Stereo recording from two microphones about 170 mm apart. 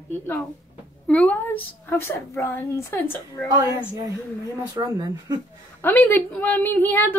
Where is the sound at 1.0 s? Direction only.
5° left (ahead or behind).